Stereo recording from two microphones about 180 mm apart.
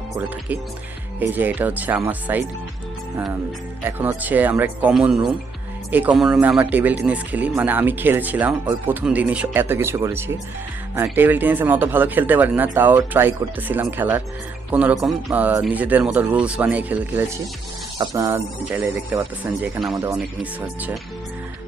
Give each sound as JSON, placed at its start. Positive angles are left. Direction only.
{"t": 1.2, "sound": "speech", "side_deg": -10}
{"t": 3.8, "sound": "speech", "side_deg": -10}